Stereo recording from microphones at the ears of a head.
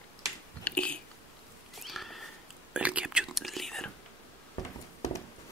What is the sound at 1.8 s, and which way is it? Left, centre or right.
Sniff, centre.